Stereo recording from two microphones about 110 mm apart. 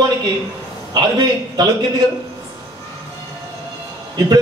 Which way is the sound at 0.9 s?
40° right (ahead or behind).